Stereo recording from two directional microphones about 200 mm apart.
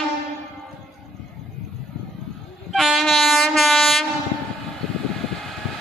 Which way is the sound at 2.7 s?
Centre (ahead or behind).